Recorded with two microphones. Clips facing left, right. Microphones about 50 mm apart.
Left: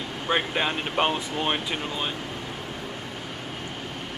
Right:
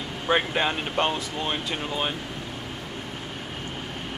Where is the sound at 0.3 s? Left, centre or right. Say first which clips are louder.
Right 2 dB; centre.